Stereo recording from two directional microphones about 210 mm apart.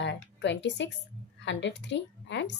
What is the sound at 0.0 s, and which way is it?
A woman's voice, 55° left (ahead or behind).